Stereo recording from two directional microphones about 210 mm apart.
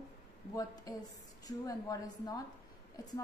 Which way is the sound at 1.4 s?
15° left (ahead or behind).